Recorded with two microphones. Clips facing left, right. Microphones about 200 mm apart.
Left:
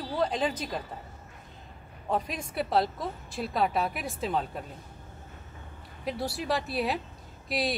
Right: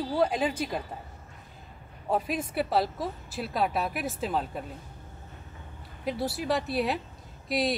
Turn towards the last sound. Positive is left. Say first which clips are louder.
# right 2 dB
turn(degrees=0)  # may be behind; listen again after turning